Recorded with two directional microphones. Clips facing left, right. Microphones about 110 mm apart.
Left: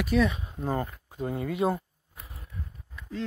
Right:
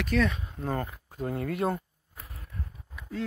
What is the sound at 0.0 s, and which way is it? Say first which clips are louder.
Speech: left 2 dB; 5° left (ahead or behind).